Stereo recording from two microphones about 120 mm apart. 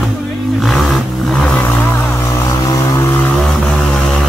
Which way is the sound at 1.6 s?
20° left (ahead or behind).